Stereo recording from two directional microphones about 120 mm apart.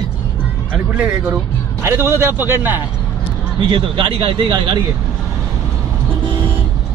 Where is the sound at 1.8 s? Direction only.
20° right (ahead or behind).